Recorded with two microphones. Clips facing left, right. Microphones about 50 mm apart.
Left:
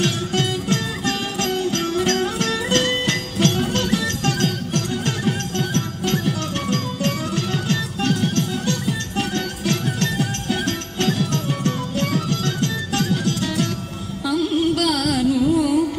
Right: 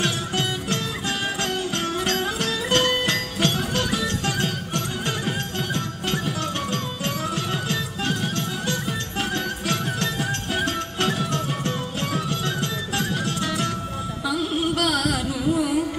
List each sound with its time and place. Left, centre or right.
0.0 s music: centre
14.3 s carnatic music: centre